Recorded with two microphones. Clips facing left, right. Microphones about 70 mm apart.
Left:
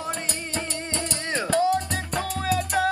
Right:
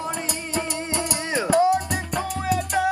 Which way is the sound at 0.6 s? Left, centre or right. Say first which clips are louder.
Right 4 dB; centre.